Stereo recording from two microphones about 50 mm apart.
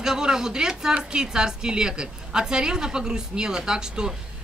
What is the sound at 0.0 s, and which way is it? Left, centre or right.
A man's voice, centre.